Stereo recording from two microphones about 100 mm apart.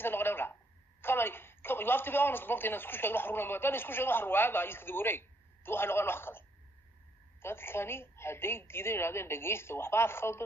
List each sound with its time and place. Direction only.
0.0 s a sound: 20° left (ahead or behind)
1.0 s a woman's voice: 20° left (ahead or behind)
7.4 s a woman's voice: 25° left (ahead or behind)